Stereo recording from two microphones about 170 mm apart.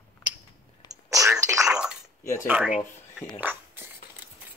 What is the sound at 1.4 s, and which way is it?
Speech, 20° right (ahead or behind).